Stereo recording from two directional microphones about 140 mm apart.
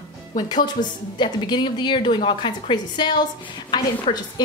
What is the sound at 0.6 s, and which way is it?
Speech, 30° left (ahead or behind).